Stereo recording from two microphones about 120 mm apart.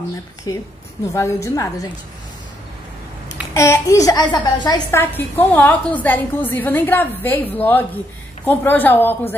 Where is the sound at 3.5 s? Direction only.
25° left (ahead or behind).